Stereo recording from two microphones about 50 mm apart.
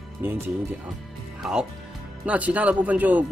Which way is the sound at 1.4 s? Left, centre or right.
Centre.